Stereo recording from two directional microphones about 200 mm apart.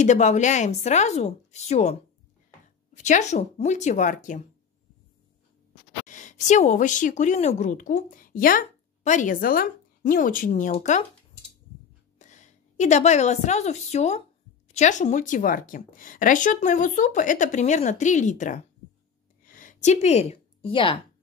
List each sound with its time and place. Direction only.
0.0 s a woman's voice: 35° left (ahead or behind)
3.0 s a woman's voice: 35° left (ahead or behind)
6.0 s a woman's voice: 40° left (ahead or behind)
12.2 s a woman's voice: 35° left (ahead or behind)
19.4 s a sound: 40° left (ahead or behind); by 21.0 s 25° left (ahead or behind)